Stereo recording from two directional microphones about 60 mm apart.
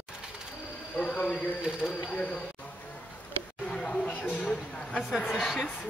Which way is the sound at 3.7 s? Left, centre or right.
Centre.